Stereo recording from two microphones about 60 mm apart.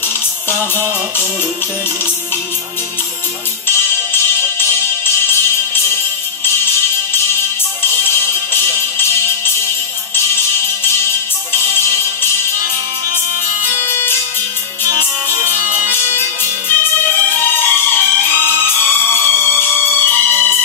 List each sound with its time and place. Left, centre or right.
3.6 s music: left
13.8 s music: left
15.6 s music: right
15.9 s music: left